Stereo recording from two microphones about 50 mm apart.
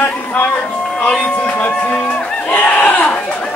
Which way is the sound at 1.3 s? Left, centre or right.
Left.